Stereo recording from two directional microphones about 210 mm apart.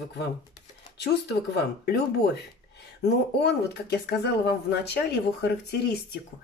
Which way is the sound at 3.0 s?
55° left (ahead or behind).